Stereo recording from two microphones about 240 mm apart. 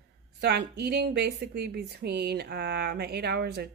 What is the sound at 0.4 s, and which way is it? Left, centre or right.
Speech, right.